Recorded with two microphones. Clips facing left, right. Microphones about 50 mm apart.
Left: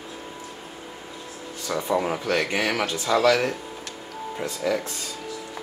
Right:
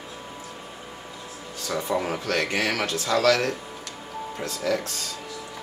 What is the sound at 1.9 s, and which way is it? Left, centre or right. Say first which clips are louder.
Speech: left 3 dB; centre.